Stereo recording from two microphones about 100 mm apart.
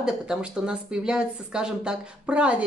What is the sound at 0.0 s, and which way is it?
Speech, 5° right (ahead or behind).